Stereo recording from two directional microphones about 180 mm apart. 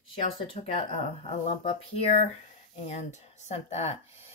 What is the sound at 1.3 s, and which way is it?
Speech, 35° left (ahead or behind).